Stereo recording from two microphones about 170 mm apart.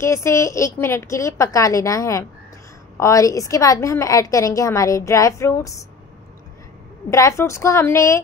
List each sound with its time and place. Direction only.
0.0 s a woman's voice: 15° left (ahead or behind)
7.1 s a woman's voice: 15° left (ahead or behind)